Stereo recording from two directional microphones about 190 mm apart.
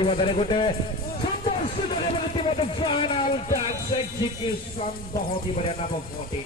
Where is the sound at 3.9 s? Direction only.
25° left (ahead or behind).